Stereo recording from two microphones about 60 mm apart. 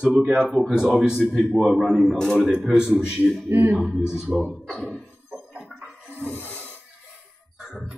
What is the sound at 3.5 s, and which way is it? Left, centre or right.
Speech, right.